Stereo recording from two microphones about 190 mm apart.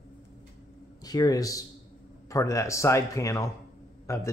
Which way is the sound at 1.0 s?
20° left (ahead or behind).